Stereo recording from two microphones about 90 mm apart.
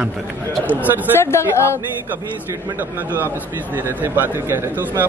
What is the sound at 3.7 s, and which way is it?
Speech, 25° right (ahead or behind).